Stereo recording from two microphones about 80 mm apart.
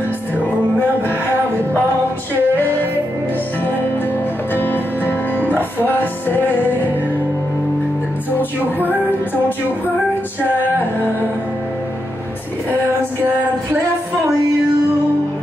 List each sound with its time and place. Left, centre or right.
2.5 s music: left
4.6 s music: left